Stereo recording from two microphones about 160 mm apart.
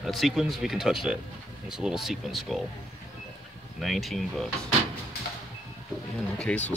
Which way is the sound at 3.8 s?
Centre (ahead or behind).